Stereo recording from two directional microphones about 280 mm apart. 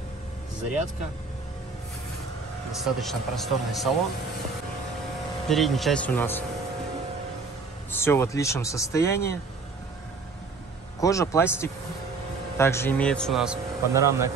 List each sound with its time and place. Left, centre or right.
2.8 s a man's voice: centre
5.5 s a man's voice: centre
7.9 s speech: centre
9.1 s speech: left
11.0 s a man's voice: centre